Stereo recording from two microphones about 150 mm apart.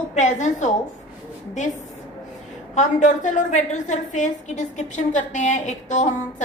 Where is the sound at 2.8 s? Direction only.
55° left (ahead or behind).